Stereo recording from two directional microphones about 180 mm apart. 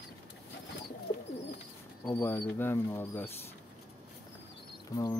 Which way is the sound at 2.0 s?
25° left (ahead or behind).